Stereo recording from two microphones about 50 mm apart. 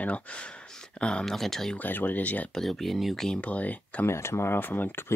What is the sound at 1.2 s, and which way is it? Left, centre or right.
Speech, centre.